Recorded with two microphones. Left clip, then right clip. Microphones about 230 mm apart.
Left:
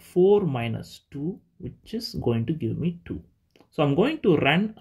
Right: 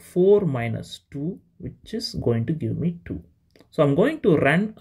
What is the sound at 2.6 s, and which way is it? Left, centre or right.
Speech, centre.